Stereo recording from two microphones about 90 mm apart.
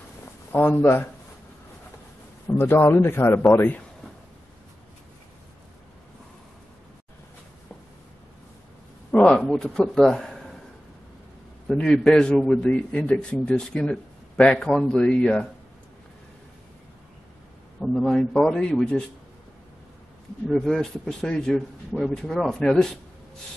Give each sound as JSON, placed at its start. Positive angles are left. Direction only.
{"t": 0.2, "sound": "a sound", "side_deg": 25}
{"t": 2.4, "sound": "a man's voice", "side_deg": 25}
{"t": 9.1, "sound": "a man's voice", "side_deg": 15}
{"t": 11.7, "sound": "a man's voice", "side_deg": 10}
{"t": 17.7, "sound": "a man's voice", "side_deg": 5}
{"t": 20.4, "sound": "a man's voice", "side_deg": 5}